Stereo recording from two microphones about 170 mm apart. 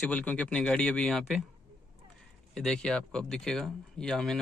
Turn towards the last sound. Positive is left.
turn(degrees=5)  # may be behind; listen again after turning